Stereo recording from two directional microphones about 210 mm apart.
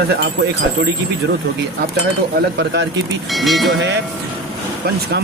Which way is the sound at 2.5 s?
60° right (ahead or behind).